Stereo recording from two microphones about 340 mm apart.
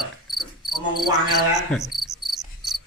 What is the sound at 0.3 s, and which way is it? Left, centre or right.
Cricket, centre.